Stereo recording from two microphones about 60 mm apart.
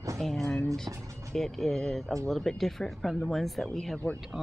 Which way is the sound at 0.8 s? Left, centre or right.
Right.